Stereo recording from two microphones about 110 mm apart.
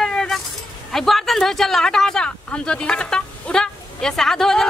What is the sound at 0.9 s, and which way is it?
Speech, centre (ahead or behind).